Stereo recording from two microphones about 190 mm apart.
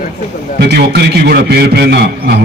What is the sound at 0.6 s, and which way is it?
A man's voice, 60° right (ahead or behind).